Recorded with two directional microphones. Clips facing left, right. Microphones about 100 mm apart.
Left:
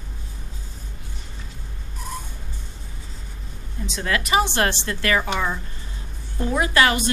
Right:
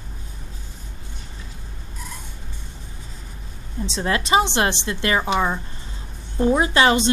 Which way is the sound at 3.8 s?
30° right (ahead or behind).